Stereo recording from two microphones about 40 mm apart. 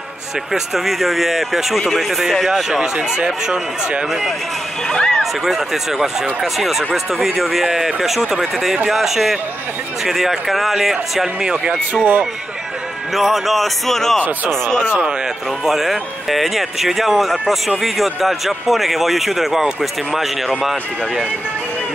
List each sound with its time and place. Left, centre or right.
0.5 s speech: centre
2.7 s speech: right
4.8 s speech: centre
5.2 s speech: centre
11.9 s speech: right
13.1 s speech: centre
15.6 s speech: centre